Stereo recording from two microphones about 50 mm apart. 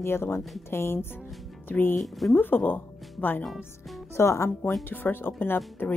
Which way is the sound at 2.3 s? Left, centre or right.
Left.